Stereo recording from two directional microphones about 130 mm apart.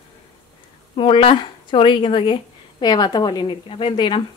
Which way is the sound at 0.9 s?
40° left (ahead or behind).